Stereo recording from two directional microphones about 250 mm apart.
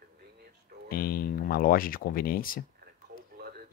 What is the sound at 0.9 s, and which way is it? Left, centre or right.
Speech, left.